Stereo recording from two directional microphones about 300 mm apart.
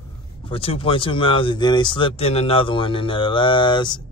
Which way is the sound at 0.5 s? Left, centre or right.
Centre.